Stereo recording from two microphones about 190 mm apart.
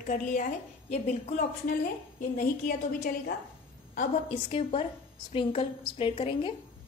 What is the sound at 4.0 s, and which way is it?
A woman's voice, 30° left (ahead or behind).